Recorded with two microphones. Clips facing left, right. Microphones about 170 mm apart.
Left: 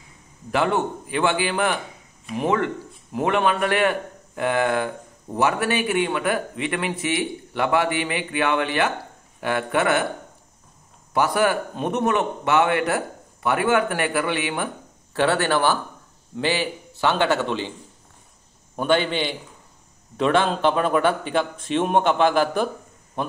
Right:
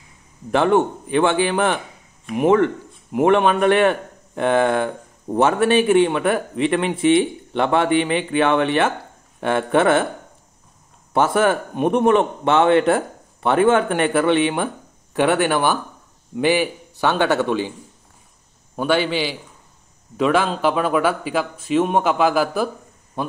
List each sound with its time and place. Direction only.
0.5 s speech: 25° right (ahead or behind)
11.1 s a man's voice: 25° right (ahead or behind)
18.8 s a man's voice: 10° right (ahead or behind)